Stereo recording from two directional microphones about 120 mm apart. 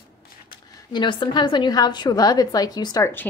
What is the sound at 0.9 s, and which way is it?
A woman's voice, 40° left (ahead or behind).